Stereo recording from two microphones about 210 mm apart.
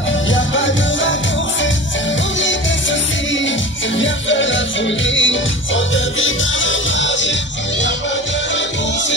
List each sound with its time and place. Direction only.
0.3 s music: 60° left (ahead or behind)
4.0 s music: 60° left (ahead or behind)